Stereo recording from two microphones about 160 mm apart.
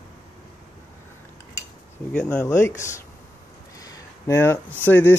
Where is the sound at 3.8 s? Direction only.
20° left (ahead or behind).